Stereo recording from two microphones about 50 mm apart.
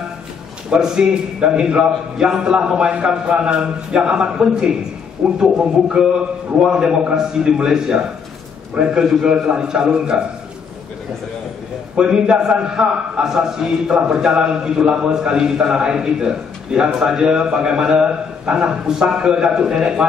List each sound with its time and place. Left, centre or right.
0.7 s a man's voice: centre
6.6 s a man's voice: centre
9.0 s a man's voice: centre
12.0 s a man's voice: centre